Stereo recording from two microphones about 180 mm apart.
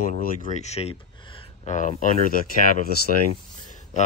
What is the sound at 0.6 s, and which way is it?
Speech, 35° left (ahead or behind).